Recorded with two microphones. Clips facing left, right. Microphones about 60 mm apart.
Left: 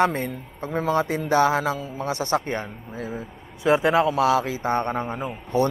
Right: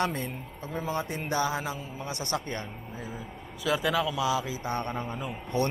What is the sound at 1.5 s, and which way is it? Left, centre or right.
Mantra, left.